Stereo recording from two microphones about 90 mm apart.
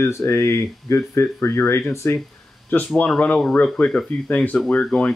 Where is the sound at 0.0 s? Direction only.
30° left (ahead or behind).